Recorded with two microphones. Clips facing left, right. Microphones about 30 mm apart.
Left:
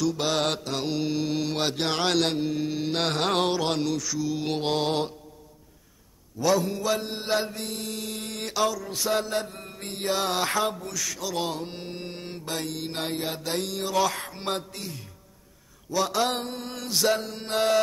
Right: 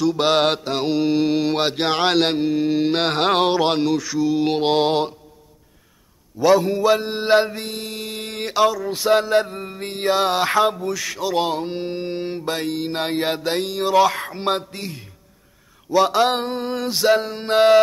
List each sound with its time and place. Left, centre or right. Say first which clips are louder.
0.2 s mantra: right 8 dB; right
6.3 s mantra: right 8 dB; right
15.9 s mantra: right 9 dB; right